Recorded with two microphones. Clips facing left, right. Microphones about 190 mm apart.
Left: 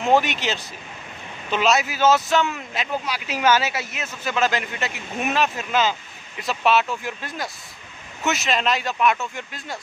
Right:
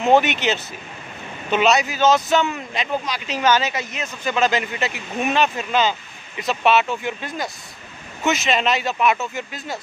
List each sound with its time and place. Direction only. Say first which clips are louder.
0.0 s speech: right 3 dB; centre (ahead or behind)